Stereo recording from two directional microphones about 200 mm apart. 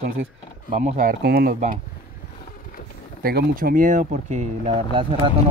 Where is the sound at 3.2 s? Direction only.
50° right (ahead or behind); by 5.0 s 30° right (ahead or behind).